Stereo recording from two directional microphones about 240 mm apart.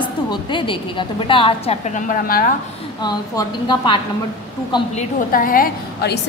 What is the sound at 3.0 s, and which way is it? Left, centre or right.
A woman's voice, centre.